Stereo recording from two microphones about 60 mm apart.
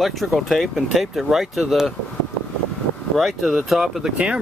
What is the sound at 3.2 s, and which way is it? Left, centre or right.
Speech, centre.